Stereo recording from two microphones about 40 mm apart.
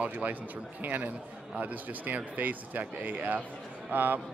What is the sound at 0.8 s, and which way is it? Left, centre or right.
Speech, right.